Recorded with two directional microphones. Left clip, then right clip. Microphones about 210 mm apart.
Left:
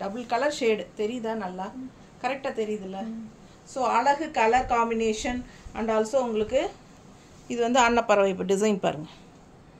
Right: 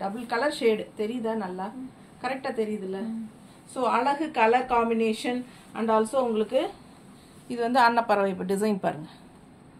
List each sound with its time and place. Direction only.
0.0 s a woman's voice: 25° left (ahead or behind)